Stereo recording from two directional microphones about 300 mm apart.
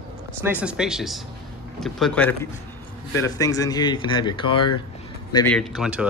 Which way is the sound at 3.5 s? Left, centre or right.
Centre.